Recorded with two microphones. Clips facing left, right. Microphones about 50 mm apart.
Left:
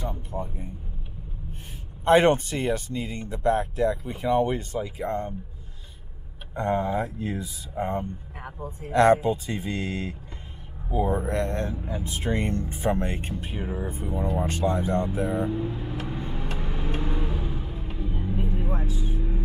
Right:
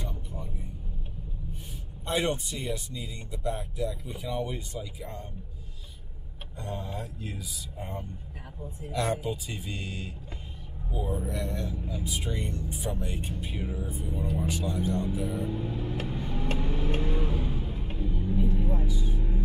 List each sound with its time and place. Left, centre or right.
0.0 s music: left
2.0 s speech: left
6.5 s speech: left
7.8 s speech: left
15.5 s speech: left
16.1 s vehicle: left
18.2 s vehicle: left